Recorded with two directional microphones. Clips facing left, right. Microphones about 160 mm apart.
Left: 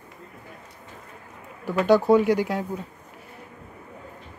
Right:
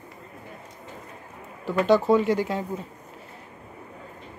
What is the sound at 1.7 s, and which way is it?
Speech, 5° left (ahead or behind).